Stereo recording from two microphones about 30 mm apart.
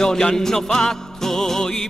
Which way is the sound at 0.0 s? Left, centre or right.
Left.